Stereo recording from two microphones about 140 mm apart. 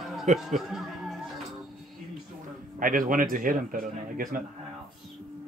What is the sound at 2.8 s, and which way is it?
Speech, 80° right.